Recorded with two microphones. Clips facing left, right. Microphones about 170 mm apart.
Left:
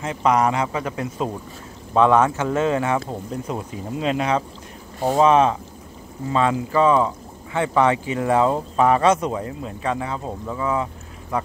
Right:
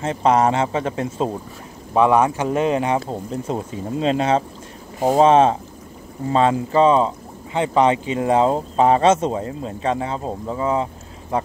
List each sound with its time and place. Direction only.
0.0 s speech: 30° right (ahead or behind)
2.0 s speech: 15° right (ahead or behind)